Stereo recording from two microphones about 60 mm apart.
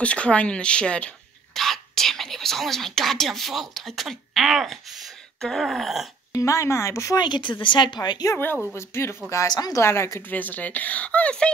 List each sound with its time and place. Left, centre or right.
0.0 s speech: centre
1.5 s speech: centre
6.3 s a woman's voice: left
7.5 s speech: left
8.0 s speech: left
8.7 s speech: left
9.3 s speech: left
9.8 s speech: left
10.2 s speech: left